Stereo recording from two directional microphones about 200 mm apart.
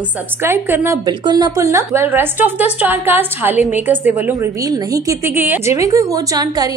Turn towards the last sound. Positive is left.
turn(degrees=-20)  # may be behind; listen again after turning